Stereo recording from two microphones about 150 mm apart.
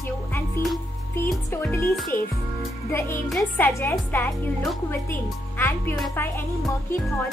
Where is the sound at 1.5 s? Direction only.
15° left (ahead or behind).